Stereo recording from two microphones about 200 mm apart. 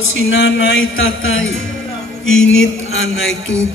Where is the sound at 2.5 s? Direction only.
80° left.